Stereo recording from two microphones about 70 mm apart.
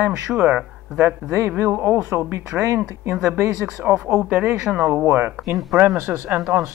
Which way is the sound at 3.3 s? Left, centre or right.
Right.